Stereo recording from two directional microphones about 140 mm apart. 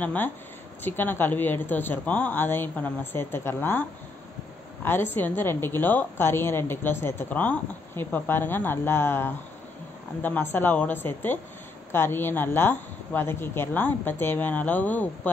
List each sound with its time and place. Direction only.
0.0 s a woman's voice: 10° left (ahead or behind)
4.8 s a woman's voice: 15° left (ahead or behind)